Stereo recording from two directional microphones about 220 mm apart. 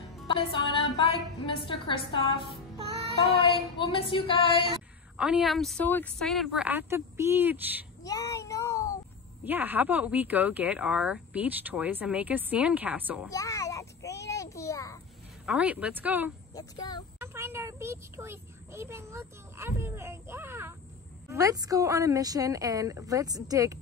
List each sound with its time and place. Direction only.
0.3 s a woman's voice: 25° left (ahead or behind)
5.1 s a woman's voice: 5° right (ahead or behind)
8.0 s child singing: 15° left (ahead or behind)
9.4 s speech: 10° right (ahead or behind)
13.3 s a sound: 15° left (ahead or behind)
15.4 s speech: 5° right (ahead or behind)
16.5 s speech: 15° left (ahead or behind)
17.2 s a child's voice: 10° right (ahead or behind)